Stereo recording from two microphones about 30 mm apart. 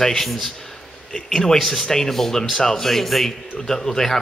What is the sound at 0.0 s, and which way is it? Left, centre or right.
Speech, centre.